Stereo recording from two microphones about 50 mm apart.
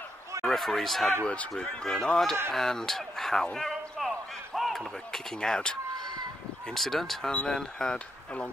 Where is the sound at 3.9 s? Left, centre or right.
Centre.